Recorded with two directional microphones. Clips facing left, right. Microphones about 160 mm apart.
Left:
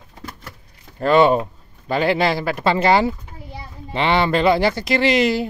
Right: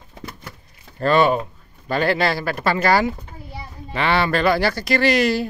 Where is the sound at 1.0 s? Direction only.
20° left (ahead or behind).